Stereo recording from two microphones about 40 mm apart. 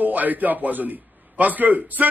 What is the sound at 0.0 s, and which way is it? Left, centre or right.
A man's voice, right.